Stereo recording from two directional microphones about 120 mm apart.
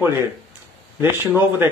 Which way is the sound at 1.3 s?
15° right (ahead or behind).